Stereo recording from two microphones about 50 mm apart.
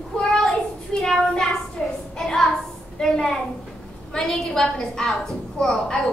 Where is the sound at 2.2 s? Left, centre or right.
Centre.